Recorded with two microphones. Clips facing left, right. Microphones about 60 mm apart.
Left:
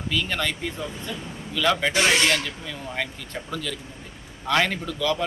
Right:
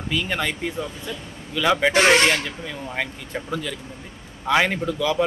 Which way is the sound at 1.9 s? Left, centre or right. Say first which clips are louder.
Right 8 dB; right.